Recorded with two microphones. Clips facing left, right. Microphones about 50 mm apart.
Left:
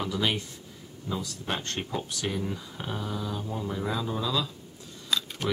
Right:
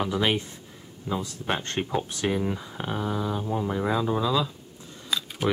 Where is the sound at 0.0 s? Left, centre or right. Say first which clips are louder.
Right 4 dB; right.